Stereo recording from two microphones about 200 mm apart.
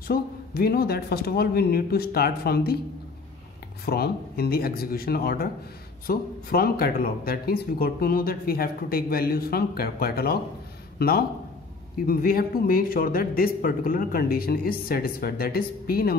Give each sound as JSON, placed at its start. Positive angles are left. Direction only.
{"t": 0.1, "sound": "speech", "side_deg": 50}
{"t": 3.8, "sound": "speech", "side_deg": 50}